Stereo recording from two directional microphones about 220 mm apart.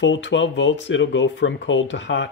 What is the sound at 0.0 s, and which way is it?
Speech, 55° left (ahead or behind).